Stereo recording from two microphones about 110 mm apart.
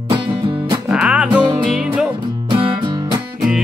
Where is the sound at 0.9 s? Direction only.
10° right (ahead or behind).